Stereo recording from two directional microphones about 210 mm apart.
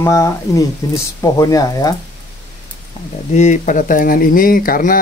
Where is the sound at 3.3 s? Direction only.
35° left (ahead or behind).